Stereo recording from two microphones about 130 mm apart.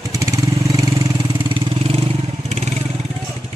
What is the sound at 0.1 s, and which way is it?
Vehicle, 25° right (ahead or behind).